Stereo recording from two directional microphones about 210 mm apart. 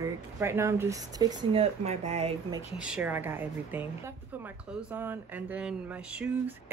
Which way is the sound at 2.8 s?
5° right (ahead or behind).